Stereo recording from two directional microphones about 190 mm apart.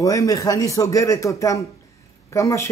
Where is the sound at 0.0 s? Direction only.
15° left (ahead or behind).